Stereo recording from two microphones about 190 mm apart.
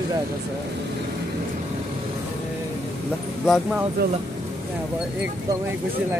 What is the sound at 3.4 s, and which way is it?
Speech, centre (ahead or behind).